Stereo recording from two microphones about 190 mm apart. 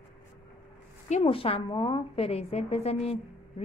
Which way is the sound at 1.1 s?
30° left (ahead or behind).